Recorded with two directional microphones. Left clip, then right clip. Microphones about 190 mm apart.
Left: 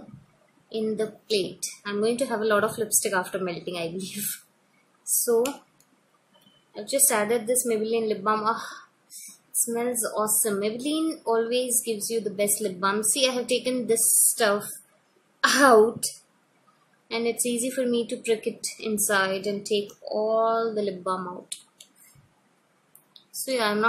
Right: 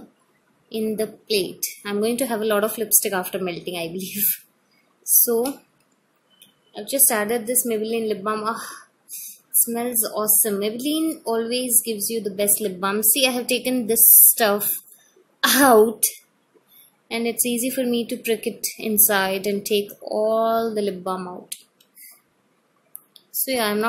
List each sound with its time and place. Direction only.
0.7 s speech: 30° right (ahead or behind)
6.7 s speech: 30° right (ahead or behind)
9.7 s speech: 30° right (ahead or behind)
15.4 s speech: 40° right (ahead or behind)
17.1 s speech: 30° right (ahead or behind)
23.4 s speech: 25° right (ahead or behind)